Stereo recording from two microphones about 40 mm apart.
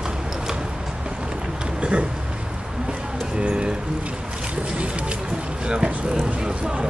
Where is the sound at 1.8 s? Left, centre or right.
Right.